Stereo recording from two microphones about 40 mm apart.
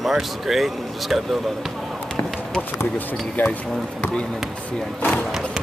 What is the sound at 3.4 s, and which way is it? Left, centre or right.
Speech, left.